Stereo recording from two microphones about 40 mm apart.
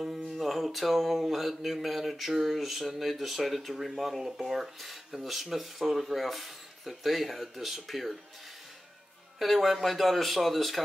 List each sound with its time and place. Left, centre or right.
0.3 s music: centre
9.4 s music: centre